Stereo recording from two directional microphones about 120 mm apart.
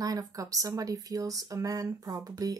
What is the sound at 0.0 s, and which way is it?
Speech, 30° right (ahead or behind).